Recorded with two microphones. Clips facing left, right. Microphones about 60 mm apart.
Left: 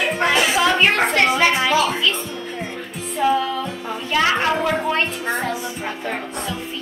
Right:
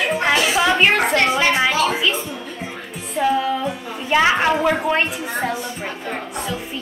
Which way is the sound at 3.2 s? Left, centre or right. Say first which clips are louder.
Even; centre.